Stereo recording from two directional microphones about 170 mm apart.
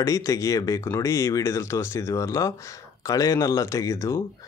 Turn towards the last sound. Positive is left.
turn(degrees=15)  # may be behind; listen again after turning